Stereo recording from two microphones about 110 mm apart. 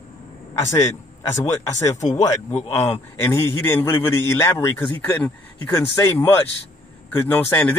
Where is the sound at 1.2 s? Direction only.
25° left (ahead or behind).